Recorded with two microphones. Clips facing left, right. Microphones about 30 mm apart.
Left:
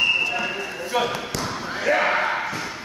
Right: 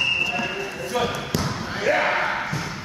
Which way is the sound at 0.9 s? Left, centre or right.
Centre.